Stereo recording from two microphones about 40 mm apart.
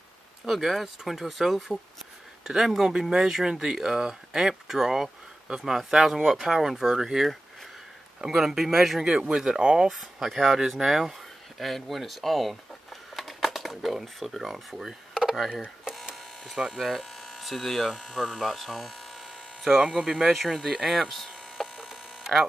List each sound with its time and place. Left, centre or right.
0.5 s speech: centre; by 9.8 s right
9.8 s speech: centre
16.7 s speech: centre
20.3 s speech: centre
21.7 s hum: centre